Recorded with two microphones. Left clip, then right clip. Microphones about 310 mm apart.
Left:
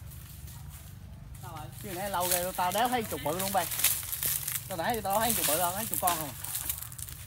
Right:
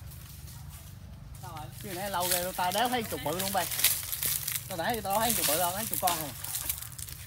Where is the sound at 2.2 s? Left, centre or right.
Centre.